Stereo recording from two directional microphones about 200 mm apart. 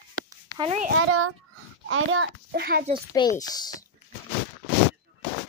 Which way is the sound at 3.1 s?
20° left (ahead or behind).